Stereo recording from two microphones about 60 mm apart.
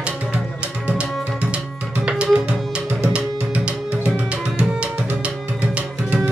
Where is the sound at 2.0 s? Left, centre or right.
Centre.